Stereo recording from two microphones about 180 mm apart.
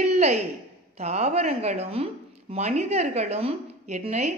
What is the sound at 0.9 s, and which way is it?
Speech, 40° right (ahead or behind).